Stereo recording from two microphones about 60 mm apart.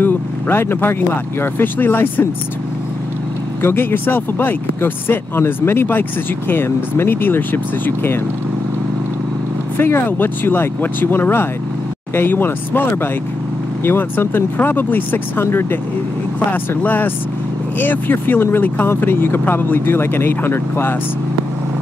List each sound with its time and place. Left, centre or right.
0.0 s speech: left
3.6 s speech: left
9.8 s speech: left
16.8 s speech: left